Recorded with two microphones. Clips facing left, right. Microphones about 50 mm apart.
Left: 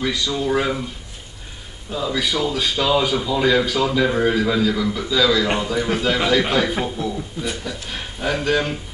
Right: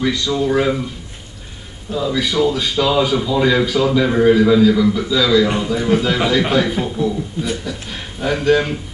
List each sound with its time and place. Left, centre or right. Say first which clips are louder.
0.0 s a man's voice: right 4 dB; centre
1.9 s a man's voice: right 3 dB; centre